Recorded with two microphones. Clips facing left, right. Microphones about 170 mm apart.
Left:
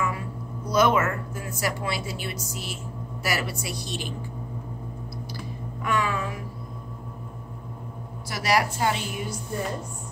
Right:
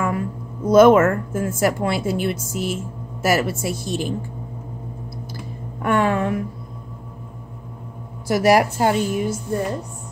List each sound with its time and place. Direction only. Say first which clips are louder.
0.0 s a woman's voice: right 6 dB; 50° right (ahead or behind)
5.3 s clicking: right 2 dB; 55° right (ahead or behind)
8.3 s a woman's voice: right 9 dB; 50° right (ahead or behind)